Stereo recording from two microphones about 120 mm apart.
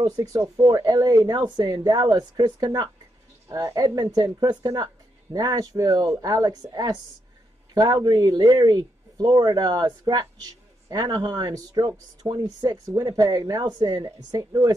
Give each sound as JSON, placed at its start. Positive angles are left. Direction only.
{"t": 0.0, "sound": "speech", "side_deg": -30}